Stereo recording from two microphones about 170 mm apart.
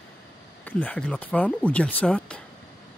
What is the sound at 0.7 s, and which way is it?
Speech, 10° left (ahead or behind).